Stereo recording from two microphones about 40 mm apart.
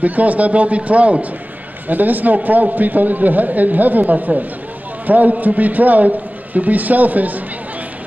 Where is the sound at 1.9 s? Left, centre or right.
Right.